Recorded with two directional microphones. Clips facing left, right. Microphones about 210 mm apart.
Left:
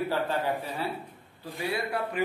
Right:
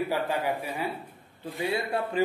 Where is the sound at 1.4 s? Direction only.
25° right (ahead or behind).